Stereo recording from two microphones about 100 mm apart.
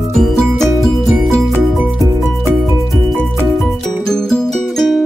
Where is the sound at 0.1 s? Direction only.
Centre (ahead or behind).